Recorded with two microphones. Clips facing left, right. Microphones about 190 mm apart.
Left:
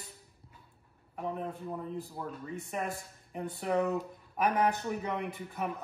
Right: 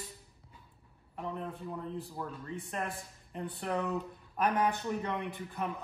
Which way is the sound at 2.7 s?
10° left (ahead or behind).